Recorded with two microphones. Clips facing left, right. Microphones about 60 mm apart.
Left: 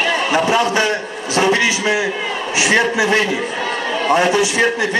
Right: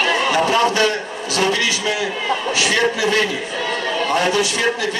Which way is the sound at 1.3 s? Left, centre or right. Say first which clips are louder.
Left 4 dB; left.